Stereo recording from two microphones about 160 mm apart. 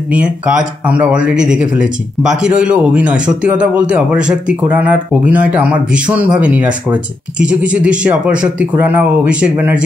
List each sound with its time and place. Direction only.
0.1 s speech: 5° right (ahead or behind)